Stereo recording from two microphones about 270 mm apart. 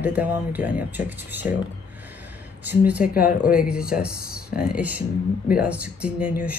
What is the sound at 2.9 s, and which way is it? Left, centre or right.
Speech, centre.